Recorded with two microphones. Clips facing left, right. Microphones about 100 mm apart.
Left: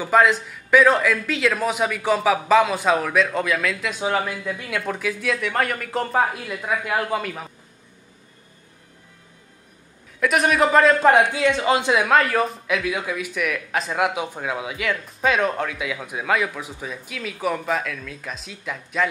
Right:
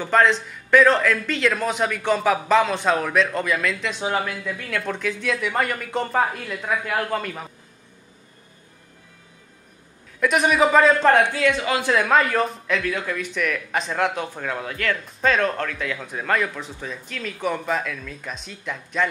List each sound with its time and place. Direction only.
0.0 s a man's voice: 5° left (ahead or behind)
4.5 s a man's voice: 15° left (ahead or behind)
7.2 s a man's voice: centre (ahead or behind)
10.2 s a man's voice: centre (ahead or behind)
11.2 s speech: 20° left (ahead or behind)
12.1 s speech: centre (ahead or behind)